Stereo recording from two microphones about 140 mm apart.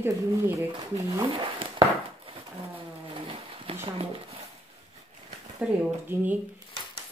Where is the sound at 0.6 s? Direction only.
20° right (ahead or behind).